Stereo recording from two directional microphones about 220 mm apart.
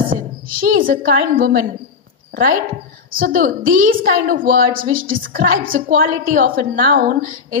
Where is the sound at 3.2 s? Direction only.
40° right (ahead or behind).